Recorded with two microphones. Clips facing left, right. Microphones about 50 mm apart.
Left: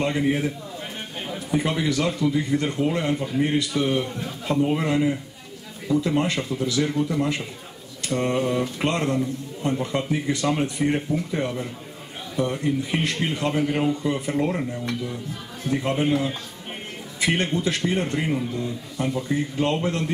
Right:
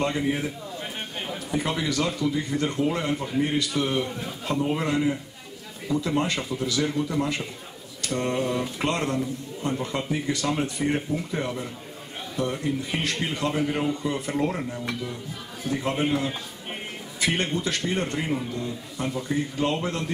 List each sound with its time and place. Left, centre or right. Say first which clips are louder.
0.0 s a sound: left 3 dB; centre
1.5 s a man's voice: left 4 dB; centre
4.5 s a man's voice: left 3 dB; centre
15.7 s a man's voice: left 3 dB; centre
16.0 s speech: left 2 dB; centre
17.2 s a man's voice: left 3 dB; centre
19.7 s a man's voice: left 3 dB; centre